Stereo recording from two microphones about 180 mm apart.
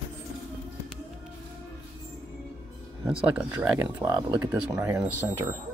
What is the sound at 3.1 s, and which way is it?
Speech, 10° right (ahead or behind).